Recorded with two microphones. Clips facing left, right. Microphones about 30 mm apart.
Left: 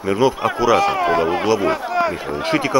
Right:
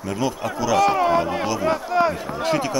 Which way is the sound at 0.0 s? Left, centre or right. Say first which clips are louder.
Left 8 dB; left.